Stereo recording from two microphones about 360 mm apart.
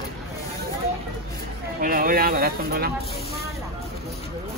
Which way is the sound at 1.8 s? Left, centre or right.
Right.